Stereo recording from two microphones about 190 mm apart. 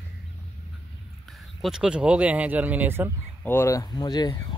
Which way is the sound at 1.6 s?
5° right (ahead or behind).